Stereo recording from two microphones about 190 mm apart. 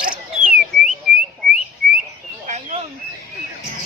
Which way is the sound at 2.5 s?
40° right (ahead or behind).